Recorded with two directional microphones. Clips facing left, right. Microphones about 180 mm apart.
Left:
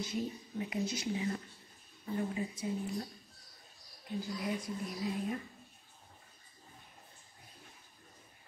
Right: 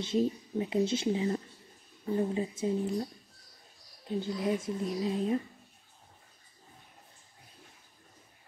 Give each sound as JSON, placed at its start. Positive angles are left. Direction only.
{"t": 0.0, "sound": "speech", "side_deg": -25}
{"t": 4.2, "sound": "speech", "side_deg": -25}